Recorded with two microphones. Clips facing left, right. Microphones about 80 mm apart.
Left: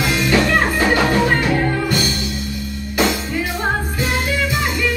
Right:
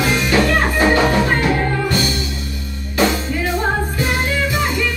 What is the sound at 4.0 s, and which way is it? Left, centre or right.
Music, right.